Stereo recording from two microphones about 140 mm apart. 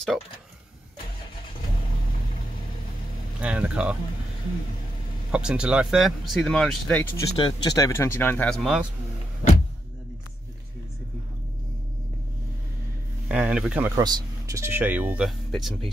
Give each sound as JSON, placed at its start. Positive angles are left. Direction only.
{"t": 3.3, "sound": "speech", "side_deg": -10}
{"t": 5.3, "sound": "speech", "side_deg": -5}
{"t": 7.3, "sound": "speech", "side_deg": 30}
{"t": 8.5, "sound": "speech", "side_deg": 0}
{"t": 13.3, "sound": "speech", "side_deg": -5}
{"t": 13.9, "sound": "speech", "side_deg": -25}
{"t": 15.2, "sound": "speech", "side_deg": 0}